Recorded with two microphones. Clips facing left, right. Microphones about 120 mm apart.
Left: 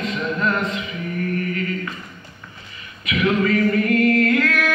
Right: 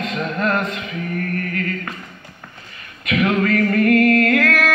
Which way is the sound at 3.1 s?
55° right (ahead or behind).